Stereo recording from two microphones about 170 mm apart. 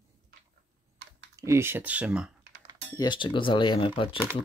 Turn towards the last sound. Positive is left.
turn(degrees=35)  # may be behind; listen again after turning